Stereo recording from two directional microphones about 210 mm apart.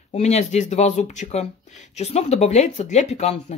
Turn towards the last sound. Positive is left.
turn(degrees=30)  # may be behind; listen again after turning